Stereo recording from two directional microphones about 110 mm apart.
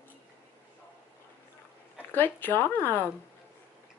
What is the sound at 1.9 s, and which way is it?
Speech, 15° left (ahead or behind).